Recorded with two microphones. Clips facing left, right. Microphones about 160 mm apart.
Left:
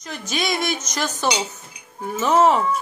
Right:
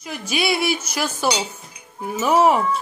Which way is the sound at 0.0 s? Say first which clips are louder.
Right 2 dB; 10° right (ahead or behind).